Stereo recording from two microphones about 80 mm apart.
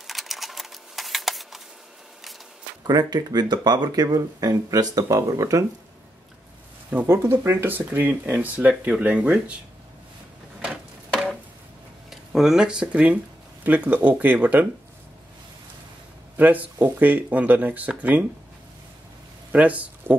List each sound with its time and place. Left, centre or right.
0.0 s a sound: centre
2.9 s speech: right
7.1 s speech: right; by 9.6 s centre
12.1 s speech: centre
16.3 s speech: right
19.5 s speech: centre